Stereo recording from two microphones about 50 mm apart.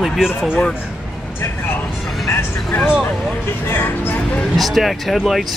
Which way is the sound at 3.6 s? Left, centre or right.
Left.